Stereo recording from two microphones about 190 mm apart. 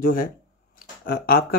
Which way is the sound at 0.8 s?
50° left (ahead or behind).